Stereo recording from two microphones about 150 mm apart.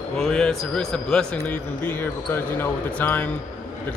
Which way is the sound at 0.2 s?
5° left (ahead or behind).